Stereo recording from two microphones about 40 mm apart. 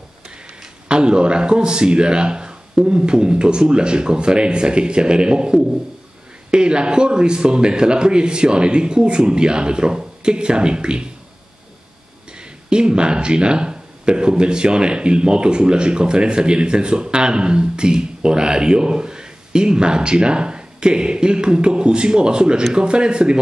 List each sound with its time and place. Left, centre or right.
0.8 s speech: right
12.4 s speech: right